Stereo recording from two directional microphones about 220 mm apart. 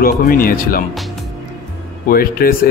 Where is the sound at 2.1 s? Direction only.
40° left (ahead or behind).